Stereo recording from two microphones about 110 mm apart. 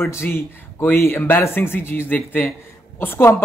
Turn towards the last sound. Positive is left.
turn(degrees=20)  # may be behind; listen again after turning